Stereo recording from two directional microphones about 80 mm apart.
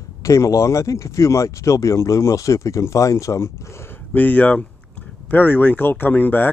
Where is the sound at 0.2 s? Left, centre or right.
Left.